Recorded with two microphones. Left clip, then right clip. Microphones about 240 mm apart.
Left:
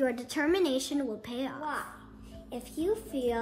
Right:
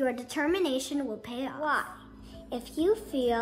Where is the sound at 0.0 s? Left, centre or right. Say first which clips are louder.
Even; centre.